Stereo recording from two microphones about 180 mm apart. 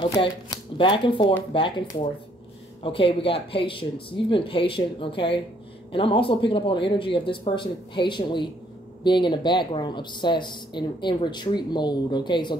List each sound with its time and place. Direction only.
0.0 s speech: 25° left (ahead or behind)